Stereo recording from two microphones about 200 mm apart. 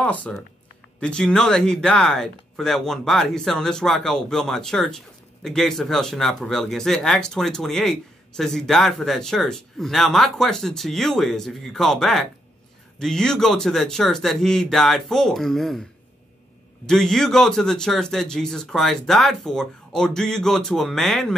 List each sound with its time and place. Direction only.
0.0 s speech: 5° left (ahead or behind)
16.8 s speech: 5° left (ahead or behind)